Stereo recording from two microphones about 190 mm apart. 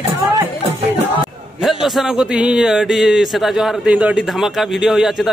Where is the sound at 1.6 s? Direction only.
Centre (ahead or behind).